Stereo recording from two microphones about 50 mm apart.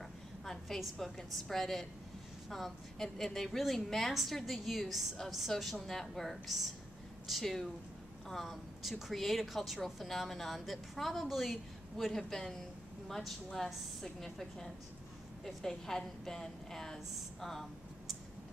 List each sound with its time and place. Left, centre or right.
0.5 s a woman's voice: centre